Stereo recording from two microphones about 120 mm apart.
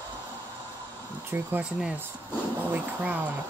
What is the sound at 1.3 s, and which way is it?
Speech, 15° right (ahead or behind).